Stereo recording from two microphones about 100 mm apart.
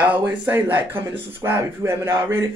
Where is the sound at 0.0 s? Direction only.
15° right (ahead or behind).